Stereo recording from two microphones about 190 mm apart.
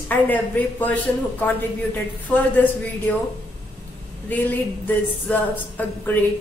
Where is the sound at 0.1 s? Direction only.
10° left (ahead or behind).